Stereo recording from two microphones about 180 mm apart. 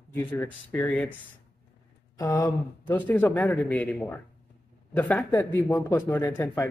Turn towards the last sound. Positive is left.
turn(degrees=10)  # may be behind; listen again after turning